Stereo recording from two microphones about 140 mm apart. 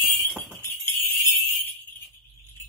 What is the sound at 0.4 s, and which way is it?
Jingle bell, 15° left (ahead or behind).